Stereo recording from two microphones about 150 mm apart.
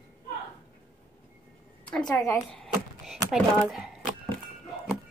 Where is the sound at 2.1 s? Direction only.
25° left (ahead or behind).